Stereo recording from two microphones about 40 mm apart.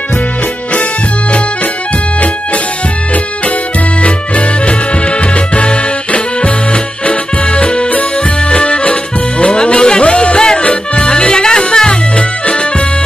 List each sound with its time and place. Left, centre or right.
4.0 s music: left
8.5 s accordion: left
9.4 s music: left